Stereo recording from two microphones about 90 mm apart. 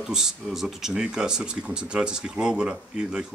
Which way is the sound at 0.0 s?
5° right (ahead or behind).